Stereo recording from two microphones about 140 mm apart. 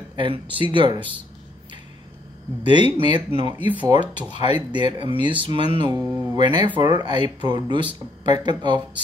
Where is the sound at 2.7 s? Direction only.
35° right (ahead or behind).